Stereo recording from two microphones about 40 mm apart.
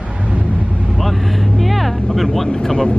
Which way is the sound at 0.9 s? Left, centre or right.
Centre.